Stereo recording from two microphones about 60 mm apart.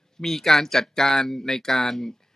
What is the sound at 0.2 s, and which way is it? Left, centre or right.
Speech, centre.